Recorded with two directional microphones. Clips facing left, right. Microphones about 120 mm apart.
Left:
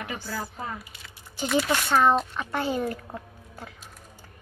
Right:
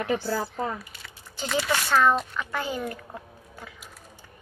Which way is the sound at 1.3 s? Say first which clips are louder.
Left 4 dB; 15° left (ahead or behind).